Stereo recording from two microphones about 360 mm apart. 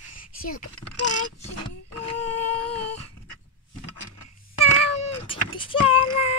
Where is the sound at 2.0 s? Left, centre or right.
Centre.